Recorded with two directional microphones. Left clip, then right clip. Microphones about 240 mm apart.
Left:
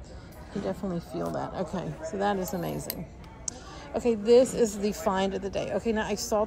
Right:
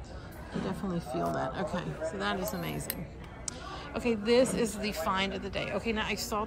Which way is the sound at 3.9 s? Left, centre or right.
Centre.